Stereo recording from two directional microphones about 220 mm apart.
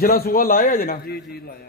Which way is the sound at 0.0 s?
40° left (ahead or behind).